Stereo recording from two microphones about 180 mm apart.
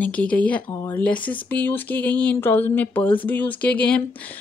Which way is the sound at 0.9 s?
10° left (ahead or behind).